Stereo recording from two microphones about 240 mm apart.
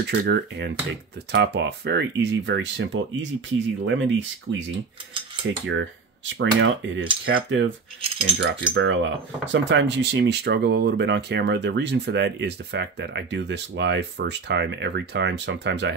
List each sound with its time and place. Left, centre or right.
0.0 s speech: right
5.7 s speech: right